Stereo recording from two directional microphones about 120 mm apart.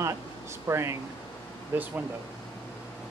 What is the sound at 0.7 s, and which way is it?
Speech, 25° right (ahead or behind).